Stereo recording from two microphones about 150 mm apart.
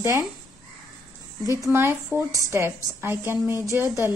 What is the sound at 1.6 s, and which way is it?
A woman's voice, 15° right (ahead or behind).